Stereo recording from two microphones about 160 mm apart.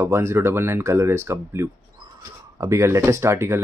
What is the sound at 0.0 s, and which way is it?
Speech, 15° right (ahead or behind).